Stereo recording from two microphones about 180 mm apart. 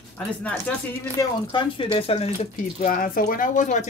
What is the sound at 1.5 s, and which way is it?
Speech, 30° left (ahead or behind).